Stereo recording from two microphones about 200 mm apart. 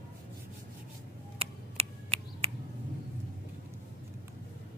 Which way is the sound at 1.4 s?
30° right (ahead or behind).